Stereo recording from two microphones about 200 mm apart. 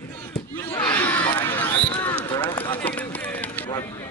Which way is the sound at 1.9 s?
25° left (ahead or behind).